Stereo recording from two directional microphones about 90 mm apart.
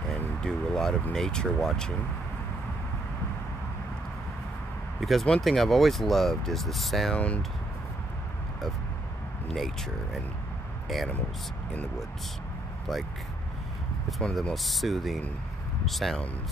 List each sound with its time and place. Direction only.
0.4 s speech: 5° left (ahead or behind)
5.0 s speech: 5° left (ahead or behind)
7.2 s speech: 15° left (ahead or behind)
9.5 s speech: centre (ahead or behind)
12.9 s speech: centre (ahead or behind)